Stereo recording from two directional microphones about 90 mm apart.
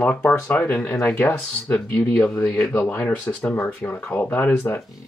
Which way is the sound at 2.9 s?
25° left (ahead or behind).